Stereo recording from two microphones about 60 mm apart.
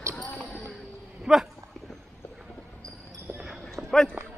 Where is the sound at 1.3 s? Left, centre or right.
Centre.